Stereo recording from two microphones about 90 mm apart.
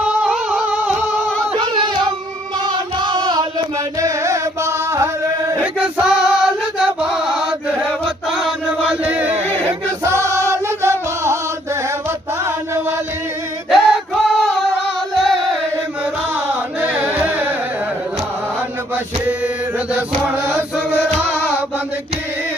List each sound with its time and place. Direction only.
0.0 s music: 10° right (ahead or behind)
1.6 s music: 60° right (ahead or behind); by 5.6 s 35° right (ahead or behind)
5.6 s male singing: 15° right (ahead or behind)
6.8 s chant: 10° right (ahead or behind)
8.3 s choir: 5° right (ahead or behind)
9.0 s chant: 15° right (ahead or behind)
10.0 s choir: 30° right (ahead or behind)
10.5 s music: 30° right (ahead or behind)
13.7 s music: centre (ahead or behind)
16.3 s carnatic music: 15° right (ahead or behind)
19.2 s mantra: 15° right (ahead or behind)
21.3 s chant: 20° left (ahead or behind)